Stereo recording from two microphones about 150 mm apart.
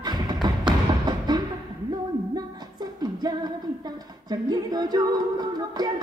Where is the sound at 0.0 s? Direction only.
30° right (ahead or behind).